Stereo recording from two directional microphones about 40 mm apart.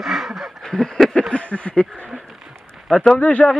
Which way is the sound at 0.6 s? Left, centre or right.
Centre.